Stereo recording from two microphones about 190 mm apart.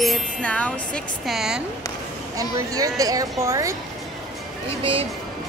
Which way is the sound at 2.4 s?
20° right (ahead or behind).